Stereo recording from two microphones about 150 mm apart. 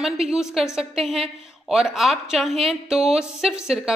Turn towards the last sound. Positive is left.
turn(degrees=-5)  # may be behind; listen again after turning